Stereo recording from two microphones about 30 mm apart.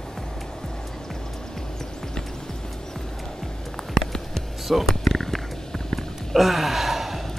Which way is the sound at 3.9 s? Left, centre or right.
Left.